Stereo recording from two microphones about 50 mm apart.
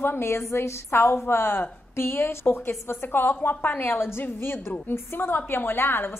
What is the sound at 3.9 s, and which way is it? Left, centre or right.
A woman's voice, left.